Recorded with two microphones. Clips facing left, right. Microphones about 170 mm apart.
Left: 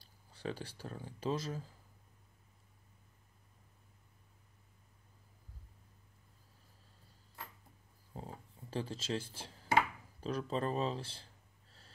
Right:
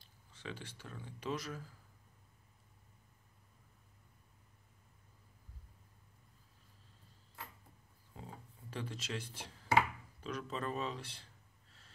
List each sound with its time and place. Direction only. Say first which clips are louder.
0.3 s speech: left 6 dB; 35° left (ahead or behind)
8.1 s a sound: left 4 dB; 35° left (ahead or behind)
10.2 s speech: left 5 dB; 35° left (ahead or behind)